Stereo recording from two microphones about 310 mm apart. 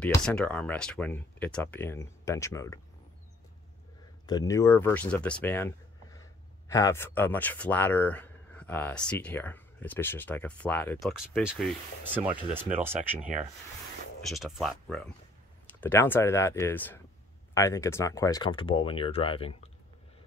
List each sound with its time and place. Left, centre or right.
0.0 s speech: centre
4.3 s speech: centre
14.3 s speech: centre